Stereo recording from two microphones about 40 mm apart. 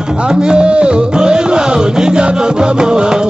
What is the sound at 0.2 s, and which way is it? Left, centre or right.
Music, right.